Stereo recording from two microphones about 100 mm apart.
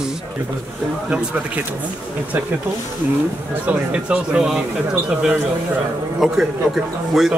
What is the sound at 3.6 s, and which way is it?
Speech, 10° right (ahead or behind).